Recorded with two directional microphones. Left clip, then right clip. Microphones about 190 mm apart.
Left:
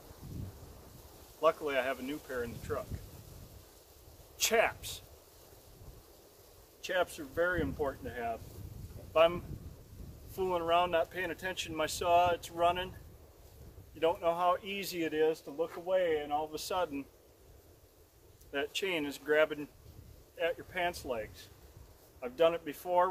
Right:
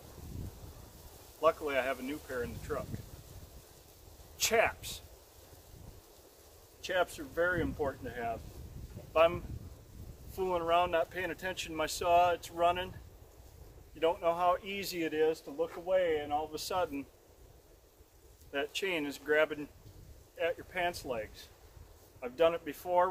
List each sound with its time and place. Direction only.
1.4 s speech: 10° left (ahead or behind)
4.4 s speech: 10° left (ahead or behind)
6.8 s speech: 10° left (ahead or behind)
13.9 s speech: 10° left (ahead or behind)
18.5 s speech: 10° left (ahead or behind)